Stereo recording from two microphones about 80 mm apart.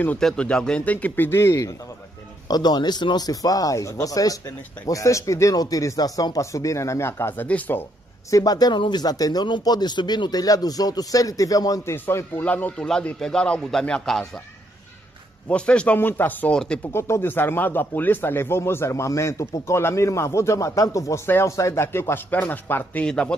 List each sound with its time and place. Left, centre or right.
0.2 s speech: centre; by 1.4 s left
1.4 s speech: left
2.4 s a man's voice: left
7.4 s speech: centre
8.3 s a man's voice: left
8.7 s a man's voice: left
11.9 s speech: left
12.4 s speech: centre
15.4 s speech: centre
16.0 s speech: left
16.5 s speech: centre
16.9 s speech: left
21.8 s speech: left
23.0 s speech: centre